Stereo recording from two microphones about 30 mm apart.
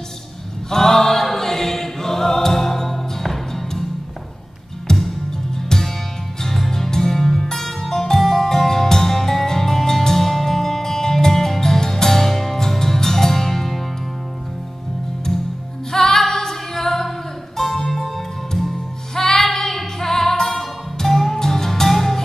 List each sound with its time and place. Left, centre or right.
0.7 s choir: centre
4.9 s music: left
6.4 s music: centre
15.9 s music: centre